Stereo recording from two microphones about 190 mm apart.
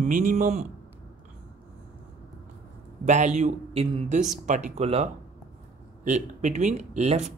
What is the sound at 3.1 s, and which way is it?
Speech, 40° right (ahead or behind).